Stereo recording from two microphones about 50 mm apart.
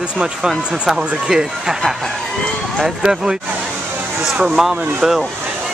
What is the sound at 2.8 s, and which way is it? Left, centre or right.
Speech, centre.